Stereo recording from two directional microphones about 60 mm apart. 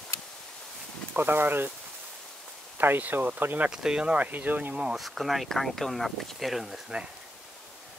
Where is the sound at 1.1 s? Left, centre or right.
Right.